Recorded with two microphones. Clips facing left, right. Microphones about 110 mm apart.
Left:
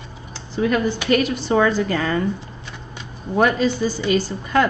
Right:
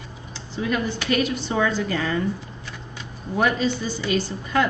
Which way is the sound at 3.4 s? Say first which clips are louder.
Left 4 dB; 50° left (ahead or behind).